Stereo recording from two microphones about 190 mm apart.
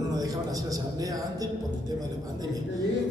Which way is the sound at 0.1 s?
20° right (ahead or behind).